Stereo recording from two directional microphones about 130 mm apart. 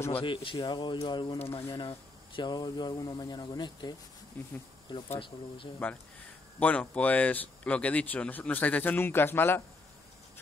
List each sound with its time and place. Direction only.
0.2 s speech: 40° left (ahead or behind)
4.4 s speech: 10° left (ahead or behind)
4.9 s speech: 35° left (ahead or behind)
5.8 s speech: 15° left (ahead or behind)